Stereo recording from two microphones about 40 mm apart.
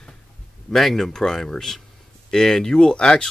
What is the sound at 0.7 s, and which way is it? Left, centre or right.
Speech, centre.